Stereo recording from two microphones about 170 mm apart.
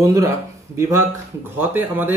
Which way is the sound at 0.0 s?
20° right (ahead or behind).